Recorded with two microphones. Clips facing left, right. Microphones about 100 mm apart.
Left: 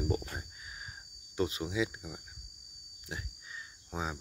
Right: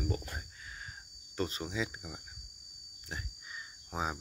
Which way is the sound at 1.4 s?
5° left (ahead or behind).